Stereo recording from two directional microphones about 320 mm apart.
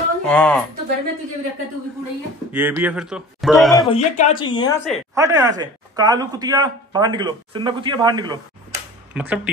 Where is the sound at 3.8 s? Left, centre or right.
Centre.